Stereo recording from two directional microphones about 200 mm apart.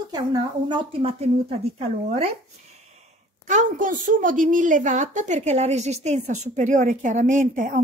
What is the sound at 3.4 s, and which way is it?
A woman's voice, 40° right (ahead or behind).